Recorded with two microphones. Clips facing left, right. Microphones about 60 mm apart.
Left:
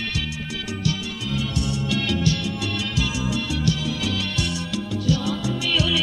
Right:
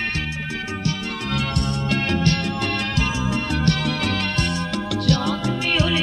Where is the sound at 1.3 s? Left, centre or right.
Right.